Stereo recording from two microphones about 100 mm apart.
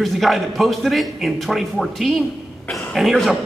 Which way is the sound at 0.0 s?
Centre (ahead or behind).